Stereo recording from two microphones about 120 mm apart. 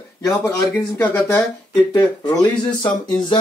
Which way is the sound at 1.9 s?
35° left (ahead or behind).